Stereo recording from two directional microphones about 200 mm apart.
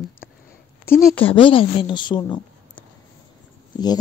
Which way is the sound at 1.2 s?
25° left (ahead or behind).